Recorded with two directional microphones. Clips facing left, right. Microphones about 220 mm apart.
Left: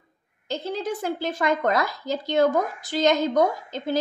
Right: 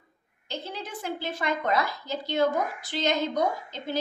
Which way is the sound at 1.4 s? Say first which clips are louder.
Left 4 dB; 45° left (ahead or behind).